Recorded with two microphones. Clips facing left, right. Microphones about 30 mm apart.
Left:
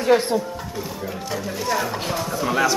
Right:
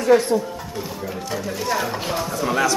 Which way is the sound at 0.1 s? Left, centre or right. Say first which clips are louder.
Right 4 dB; centre.